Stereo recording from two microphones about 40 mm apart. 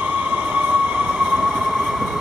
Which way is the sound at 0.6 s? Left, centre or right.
Right.